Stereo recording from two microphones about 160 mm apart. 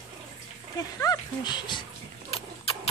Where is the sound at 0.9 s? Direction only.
25° left (ahead or behind).